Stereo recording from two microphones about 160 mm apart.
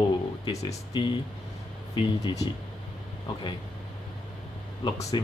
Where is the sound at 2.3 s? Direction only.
30° left (ahead or behind).